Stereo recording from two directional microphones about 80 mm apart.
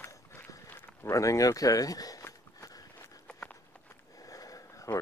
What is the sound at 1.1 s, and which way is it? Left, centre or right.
Speech, left.